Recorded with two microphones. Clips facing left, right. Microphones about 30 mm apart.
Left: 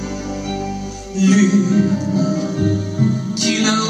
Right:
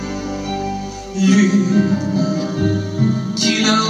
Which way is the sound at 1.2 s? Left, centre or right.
Centre.